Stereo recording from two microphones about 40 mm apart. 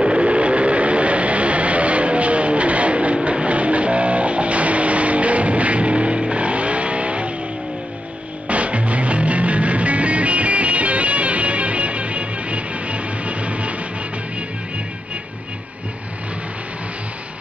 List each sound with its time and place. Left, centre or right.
0.0 s vehicle: right
3.3 s music: right
8.5 s music: right